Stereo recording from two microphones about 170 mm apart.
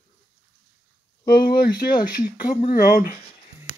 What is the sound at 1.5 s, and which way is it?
Speech, 60° left (ahead or behind).